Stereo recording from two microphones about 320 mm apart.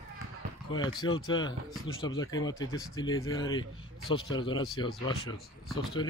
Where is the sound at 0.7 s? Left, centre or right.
Centre.